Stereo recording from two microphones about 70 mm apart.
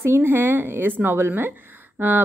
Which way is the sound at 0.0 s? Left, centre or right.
Right.